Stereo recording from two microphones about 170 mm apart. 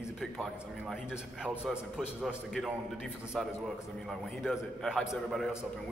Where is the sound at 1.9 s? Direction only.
Centre (ahead or behind).